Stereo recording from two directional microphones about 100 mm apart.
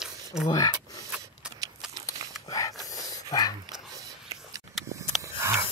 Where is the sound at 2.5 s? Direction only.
35° left (ahead or behind).